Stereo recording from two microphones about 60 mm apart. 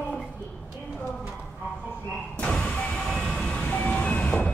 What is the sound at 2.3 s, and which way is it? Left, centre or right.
Vehicle, centre.